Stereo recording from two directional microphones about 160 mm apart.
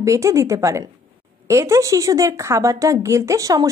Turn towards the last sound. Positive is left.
turn(degrees=-20)  # may be behind; listen again after turning